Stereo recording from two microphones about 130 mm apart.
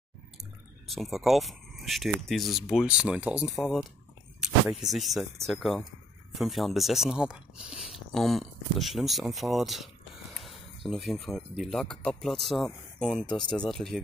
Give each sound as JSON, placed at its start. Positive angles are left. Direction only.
{"t": 0.4, "sound": "speech", "side_deg": 0}